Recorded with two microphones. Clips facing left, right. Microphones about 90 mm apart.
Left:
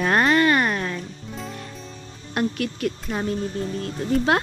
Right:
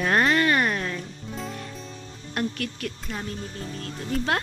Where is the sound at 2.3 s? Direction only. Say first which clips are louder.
Left 4 dB; 20° left (ahead or behind).